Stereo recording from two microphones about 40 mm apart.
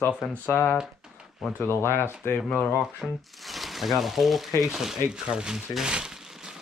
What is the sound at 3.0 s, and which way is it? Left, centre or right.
Speech, centre.